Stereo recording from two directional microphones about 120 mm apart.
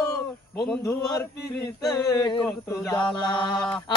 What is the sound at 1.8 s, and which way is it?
Chant, 35° left (ahead or behind).